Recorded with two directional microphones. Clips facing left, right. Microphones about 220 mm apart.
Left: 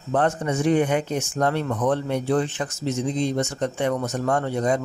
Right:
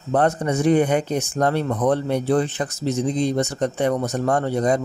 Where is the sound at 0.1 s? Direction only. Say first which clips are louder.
Right 3 dB; 40° right (ahead or behind).